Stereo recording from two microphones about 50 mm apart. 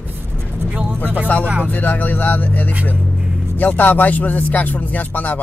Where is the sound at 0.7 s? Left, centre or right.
Right.